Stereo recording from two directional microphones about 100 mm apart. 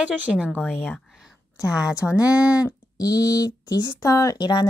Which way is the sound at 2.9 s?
40° left (ahead or behind).